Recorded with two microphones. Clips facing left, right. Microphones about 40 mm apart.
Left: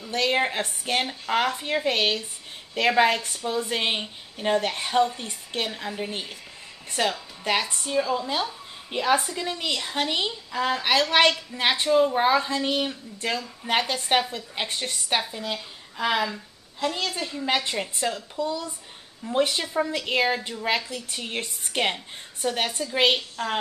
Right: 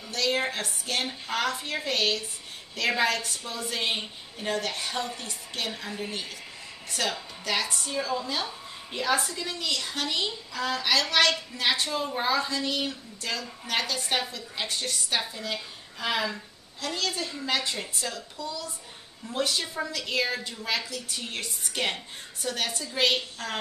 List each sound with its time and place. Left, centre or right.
0.1 s a woman's voice: left